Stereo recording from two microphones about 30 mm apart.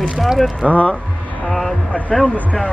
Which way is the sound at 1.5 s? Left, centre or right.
Centre.